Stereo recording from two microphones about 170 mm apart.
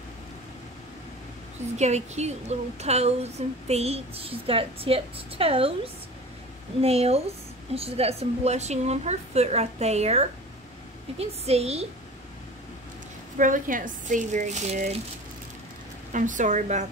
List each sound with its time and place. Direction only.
1.8 s a woman's voice: 40° right (ahead or behind)
6.8 s a woman's voice: 35° right (ahead or behind)
13.4 s speech: 50° right (ahead or behind)
16.1 s speech: 50° right (ahead or behind)